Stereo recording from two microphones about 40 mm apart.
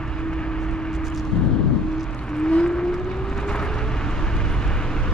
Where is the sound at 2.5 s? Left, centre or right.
Left.